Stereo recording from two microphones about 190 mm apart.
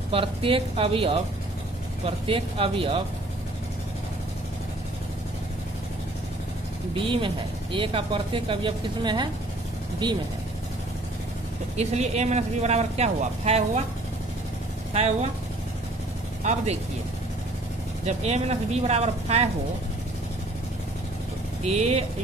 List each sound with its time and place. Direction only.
0.1 s speech: 30° right (ahead or behind)
7.0 s speech: 25° right (ahead or behind)
11.7 s speech: 35° right (ahead or behind)
14.9 s speech: 35° right (ahead or behind)
16.4 s speech: 40° right (ahead or behind)
18.0 s speech: 35° right (ahead or behind)
21.7 s speech: 35° right (ahead or behind)